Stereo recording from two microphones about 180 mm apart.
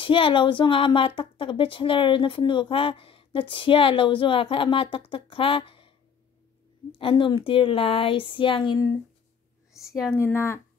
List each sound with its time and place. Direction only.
0.0 s speech: 30° left (ahead or behind)
10.1 s speech: 15° left (ahead or behind)